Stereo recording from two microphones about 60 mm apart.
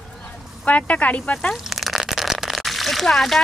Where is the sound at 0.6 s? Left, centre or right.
Left.